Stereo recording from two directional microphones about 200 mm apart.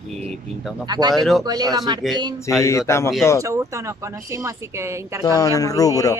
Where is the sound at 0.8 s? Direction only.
20° right (ahead or behind).